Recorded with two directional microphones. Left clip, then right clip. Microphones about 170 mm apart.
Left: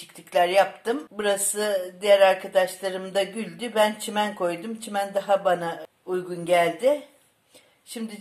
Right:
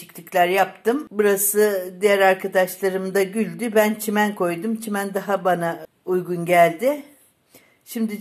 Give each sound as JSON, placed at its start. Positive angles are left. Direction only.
{"t": 0.1, "sound": "speech", "side_deg": -40}